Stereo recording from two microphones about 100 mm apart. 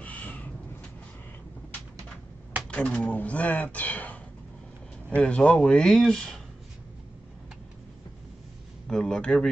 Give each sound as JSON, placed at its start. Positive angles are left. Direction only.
{"t": 0.0, "sound": "crow", "side_deg": 15}
{"t": 2.7, "sound": "speech", "side_deg": 10}
{"t": 8.8, "sound": "speech", "side_deg": 5}